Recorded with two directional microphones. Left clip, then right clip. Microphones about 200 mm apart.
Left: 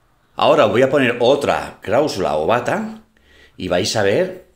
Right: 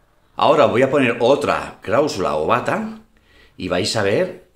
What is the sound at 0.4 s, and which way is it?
Speech, 10° left (ahead or behind).